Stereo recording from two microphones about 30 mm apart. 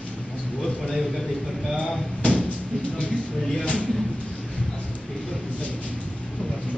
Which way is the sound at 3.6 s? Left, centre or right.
Left.